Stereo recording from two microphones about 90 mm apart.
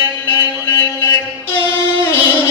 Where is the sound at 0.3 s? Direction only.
35° left (ahead or behind).